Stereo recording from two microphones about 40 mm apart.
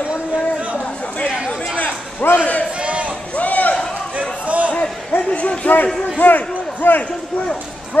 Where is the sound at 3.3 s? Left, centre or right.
Left.